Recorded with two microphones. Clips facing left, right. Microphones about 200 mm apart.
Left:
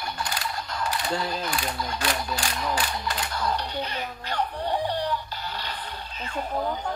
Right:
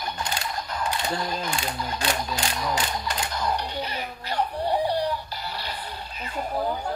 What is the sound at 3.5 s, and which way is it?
Music, 10° right (ahead or behind).